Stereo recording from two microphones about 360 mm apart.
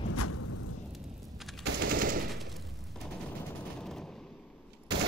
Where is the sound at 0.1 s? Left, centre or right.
Left.